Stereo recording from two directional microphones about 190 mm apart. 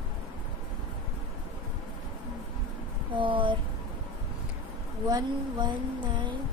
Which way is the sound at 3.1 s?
25° right (ahead or behind).